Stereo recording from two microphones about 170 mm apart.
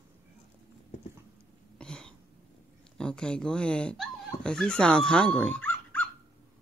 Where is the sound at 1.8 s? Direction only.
5° left (ahead or behind).